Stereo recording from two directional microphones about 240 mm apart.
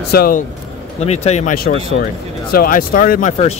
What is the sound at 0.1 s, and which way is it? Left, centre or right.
Speech, left.